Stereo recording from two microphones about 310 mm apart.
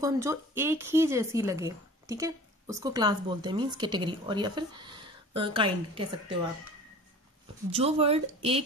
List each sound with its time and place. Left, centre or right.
0.0 s a woman's voice: centre
7.7 s speech: centre